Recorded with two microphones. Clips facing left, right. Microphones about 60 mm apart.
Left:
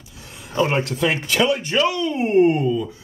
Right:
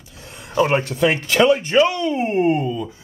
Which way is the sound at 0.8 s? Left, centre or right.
Centre.